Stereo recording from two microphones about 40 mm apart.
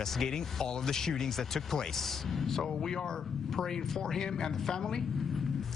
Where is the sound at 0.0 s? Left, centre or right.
Centre.